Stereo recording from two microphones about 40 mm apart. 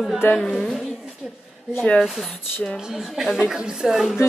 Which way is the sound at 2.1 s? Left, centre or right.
Centre.